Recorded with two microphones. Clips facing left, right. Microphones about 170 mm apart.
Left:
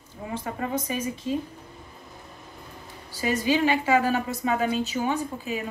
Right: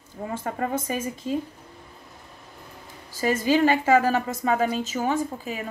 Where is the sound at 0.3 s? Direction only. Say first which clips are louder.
Right 2 dB; 50° right (ahead or behind).